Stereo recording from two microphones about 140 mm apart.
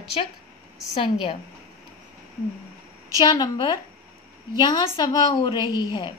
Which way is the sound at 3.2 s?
30° left (ahead or behind).